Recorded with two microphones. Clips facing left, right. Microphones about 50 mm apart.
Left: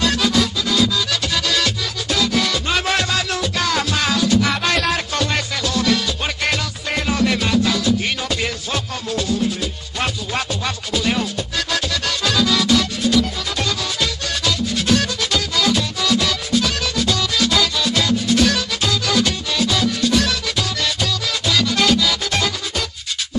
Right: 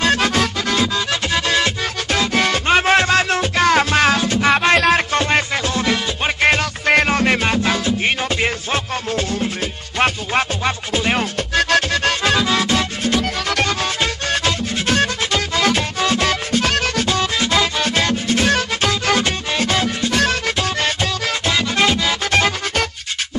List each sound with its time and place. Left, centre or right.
0.0 s music: right
6.9 s music: right
13.2 s music: right